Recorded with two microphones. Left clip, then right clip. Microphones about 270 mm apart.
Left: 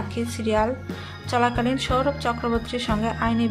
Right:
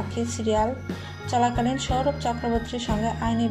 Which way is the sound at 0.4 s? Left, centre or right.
Centre.